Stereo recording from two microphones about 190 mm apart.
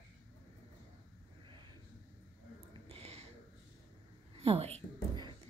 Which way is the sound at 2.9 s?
30° right (ahead or behind).